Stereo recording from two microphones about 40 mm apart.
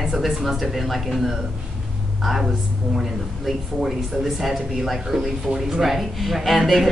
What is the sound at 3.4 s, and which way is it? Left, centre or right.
A woman's voice, centre.